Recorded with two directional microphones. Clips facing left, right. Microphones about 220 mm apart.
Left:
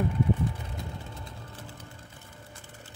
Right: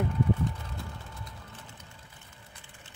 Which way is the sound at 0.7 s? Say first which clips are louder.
Left 3 dB; 30° left (ahead or behind).